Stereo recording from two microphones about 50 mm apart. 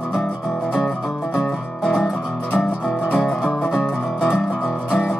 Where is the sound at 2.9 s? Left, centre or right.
Left.